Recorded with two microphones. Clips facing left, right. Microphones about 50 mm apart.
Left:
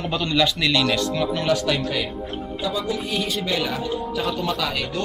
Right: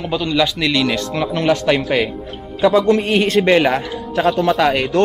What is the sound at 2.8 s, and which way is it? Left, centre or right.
Speech, right.